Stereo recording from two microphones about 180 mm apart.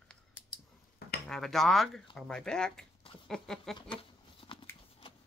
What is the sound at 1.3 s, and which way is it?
Speech, centre (ahead or behind).